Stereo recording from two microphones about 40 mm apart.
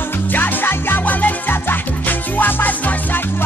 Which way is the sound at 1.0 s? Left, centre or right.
Left.